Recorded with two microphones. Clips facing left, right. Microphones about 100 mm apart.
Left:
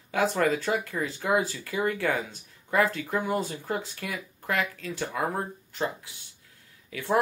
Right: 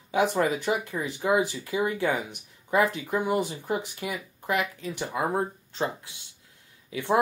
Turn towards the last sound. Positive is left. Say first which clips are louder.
# right 2 dB
turn(degrees=-20)  # may be behind; listen again after turning